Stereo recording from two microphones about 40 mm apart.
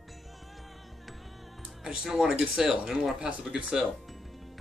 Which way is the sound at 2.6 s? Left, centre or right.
Centre.